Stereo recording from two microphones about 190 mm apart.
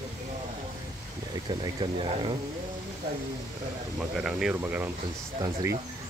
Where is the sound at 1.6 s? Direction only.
25° right (ahead or behind).